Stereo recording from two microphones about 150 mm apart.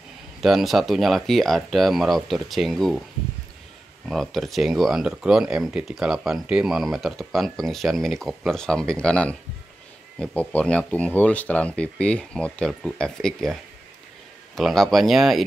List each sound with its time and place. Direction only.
0.4 s speech: centre (ahead or behind)
4.1 s speech: centre (ahead or behind)